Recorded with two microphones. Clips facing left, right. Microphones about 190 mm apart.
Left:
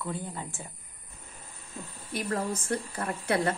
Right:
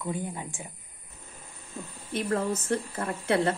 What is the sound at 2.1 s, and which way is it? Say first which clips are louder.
Speech: right 3 dB; 25° right (ahead or behind).